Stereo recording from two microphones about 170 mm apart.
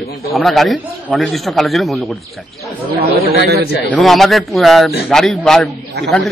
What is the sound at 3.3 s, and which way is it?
Speech, 70° right (ahead or behind).